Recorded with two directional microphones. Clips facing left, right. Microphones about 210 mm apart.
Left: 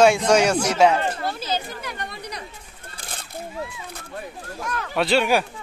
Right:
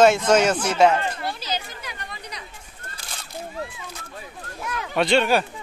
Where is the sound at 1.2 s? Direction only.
50° left (ahead or behind).